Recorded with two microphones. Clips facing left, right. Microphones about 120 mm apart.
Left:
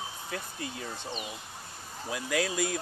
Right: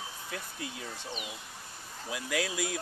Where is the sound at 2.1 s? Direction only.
5° right (ahead or behind).